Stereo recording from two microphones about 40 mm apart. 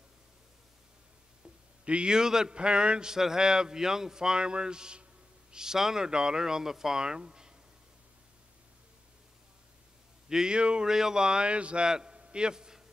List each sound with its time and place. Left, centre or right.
1.9 s speech: right
10.2 s speech: centre
10.9 s a man's voice: centre
12.2 s a sound: right